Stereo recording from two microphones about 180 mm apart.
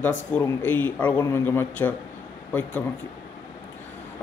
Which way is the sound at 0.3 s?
10° left (ahead or behind).